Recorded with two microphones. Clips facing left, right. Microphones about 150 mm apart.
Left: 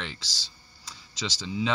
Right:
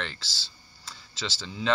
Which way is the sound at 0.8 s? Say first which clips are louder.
Left 1 dB; 15° left (ahead or behind).